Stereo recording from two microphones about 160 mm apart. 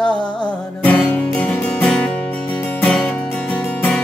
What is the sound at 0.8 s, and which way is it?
Music, 10° left (ahead or behind).